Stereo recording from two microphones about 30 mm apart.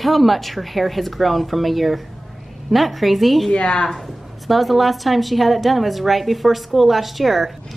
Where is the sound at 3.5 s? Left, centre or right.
Left.